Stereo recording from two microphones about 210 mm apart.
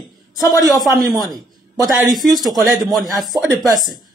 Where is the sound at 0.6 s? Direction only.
Centre (ahead or behind).